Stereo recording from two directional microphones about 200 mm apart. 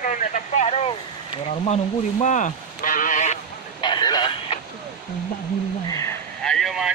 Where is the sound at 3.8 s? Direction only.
20° left (ahead or behind).